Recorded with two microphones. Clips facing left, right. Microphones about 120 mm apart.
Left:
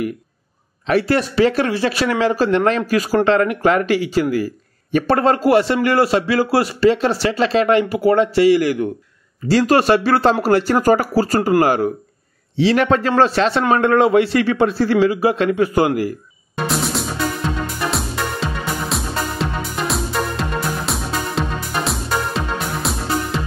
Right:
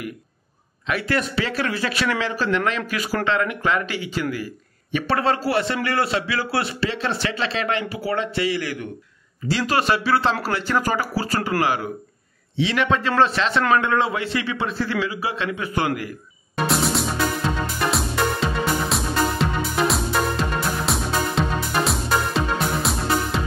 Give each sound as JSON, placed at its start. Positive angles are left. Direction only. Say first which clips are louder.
{"t": 0.8, "sound": "a man's voice", "louder": "left 7 dB", "side_deg": 35}
{"t": 16.5, "sound": "music", "louder": "even", "side_deg": 0}